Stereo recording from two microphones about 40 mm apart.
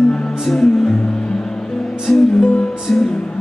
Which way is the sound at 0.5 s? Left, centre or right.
Centre.